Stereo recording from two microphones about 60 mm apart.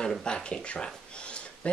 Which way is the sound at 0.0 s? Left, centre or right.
Centre.